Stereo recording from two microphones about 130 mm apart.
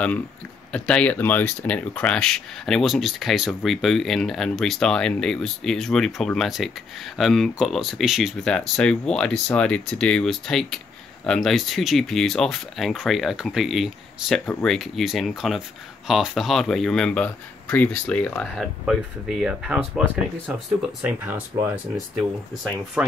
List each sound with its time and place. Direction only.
0.7 s speech: 10° left (ahead or behind)
14.4 s speech: 15° left (ahead or behind)
14.7 s speech: centre (ahead or behind)
21.0 s speech: 10° right (ahead or behind)